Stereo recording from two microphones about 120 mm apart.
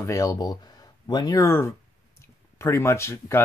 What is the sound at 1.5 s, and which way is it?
Speech, 20° left (ahead or behind).